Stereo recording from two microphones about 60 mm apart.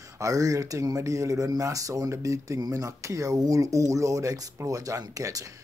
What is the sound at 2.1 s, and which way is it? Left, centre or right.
Speech, right.